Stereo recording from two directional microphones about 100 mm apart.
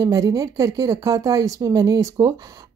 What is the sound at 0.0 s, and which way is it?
A woman's voice, 35° right (ahead or behind).